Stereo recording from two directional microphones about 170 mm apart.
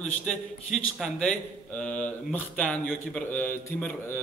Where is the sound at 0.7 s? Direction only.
Centre (ahead or behind).